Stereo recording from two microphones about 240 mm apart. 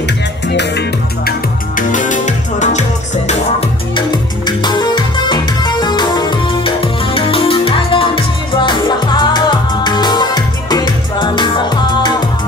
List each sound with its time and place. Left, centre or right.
0.5 s music: left
1.8 s music: left